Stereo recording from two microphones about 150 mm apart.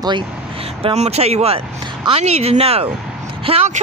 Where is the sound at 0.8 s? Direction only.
45° right (ahead or behind).